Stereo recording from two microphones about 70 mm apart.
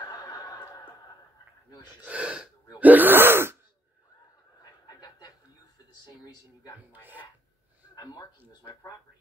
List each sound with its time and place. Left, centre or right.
0.0 s neigh: left
2.0 s gasp: centre; by 3.5 s right
6.9 s speech: right
7.9 s speech: left